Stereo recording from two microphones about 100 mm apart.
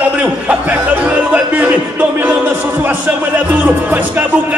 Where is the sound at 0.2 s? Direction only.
15° right (ahead or behind).